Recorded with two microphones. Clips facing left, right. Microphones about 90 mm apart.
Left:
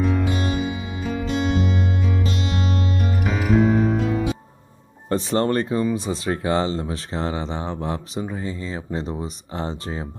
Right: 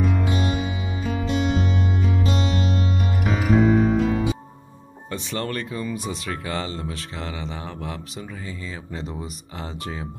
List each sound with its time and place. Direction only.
3.3 s music: centre (ahead or behind)
5.1 s speech: 35° left (ahead or behind)